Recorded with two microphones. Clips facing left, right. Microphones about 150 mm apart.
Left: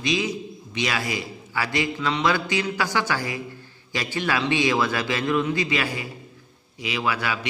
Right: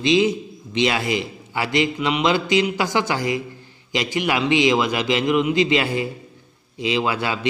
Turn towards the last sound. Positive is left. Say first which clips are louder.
# right 4 dB
turn(degrees=-25)  # may be behind; listen again after turning